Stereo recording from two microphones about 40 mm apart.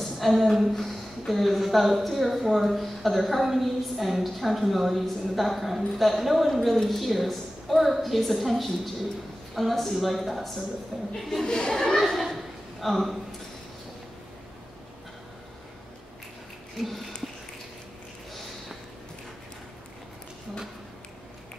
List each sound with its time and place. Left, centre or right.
0.0 s a woman's voice: centre
11.4 s a woman's voice: left; by 13.2 s centre